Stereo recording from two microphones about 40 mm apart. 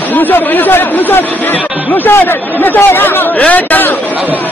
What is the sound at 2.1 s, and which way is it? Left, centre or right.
Speech, left.